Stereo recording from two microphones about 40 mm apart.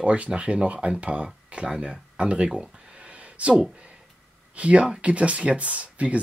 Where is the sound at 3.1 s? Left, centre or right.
Right.